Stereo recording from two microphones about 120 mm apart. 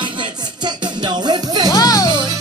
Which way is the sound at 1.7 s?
30° left (ahead or behind).